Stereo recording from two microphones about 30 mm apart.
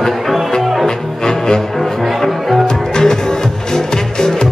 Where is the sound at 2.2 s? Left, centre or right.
Centre.